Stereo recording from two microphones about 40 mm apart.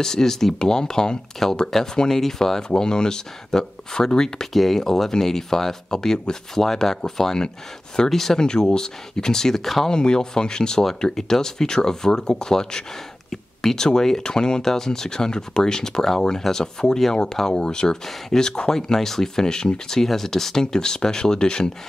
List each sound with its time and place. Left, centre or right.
0.0 s speech: centre
9.8 s speech: centre